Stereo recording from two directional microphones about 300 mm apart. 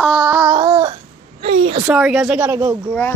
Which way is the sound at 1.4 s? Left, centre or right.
Centre.